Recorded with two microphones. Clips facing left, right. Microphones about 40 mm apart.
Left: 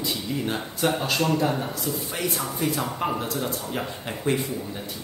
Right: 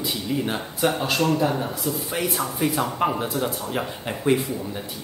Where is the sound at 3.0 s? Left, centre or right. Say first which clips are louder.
Right 4 dB; right.